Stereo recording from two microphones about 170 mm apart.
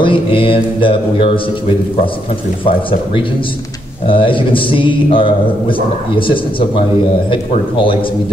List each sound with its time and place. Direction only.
0.0 s mantra: 30° left (ahead or behind)
4.1 s mantra: 30° left (ahead or behind)